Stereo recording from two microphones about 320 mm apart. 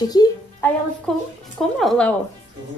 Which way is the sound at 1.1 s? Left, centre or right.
Centre.